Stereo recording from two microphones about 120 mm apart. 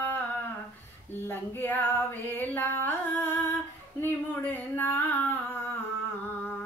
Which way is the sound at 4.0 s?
15° left (ahead or behind).